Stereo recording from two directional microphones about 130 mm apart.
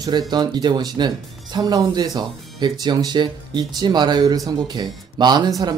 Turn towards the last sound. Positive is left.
turn(degrees=-30)  # may be behind; listen again after turning